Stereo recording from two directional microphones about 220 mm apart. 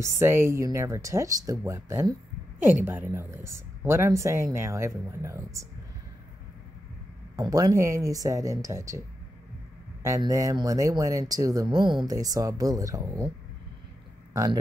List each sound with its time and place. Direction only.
0.0 s speech: 10° right (ahead or behind)
7.3 s speech: 15° right (ahead or behind)
10.0 s speech: 15° right (ahead or behind)
14.3 s speech: 15° right (ahead or behind)